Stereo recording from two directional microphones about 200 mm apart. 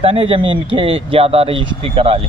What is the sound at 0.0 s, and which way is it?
Speech, 25° right (ahead or behind).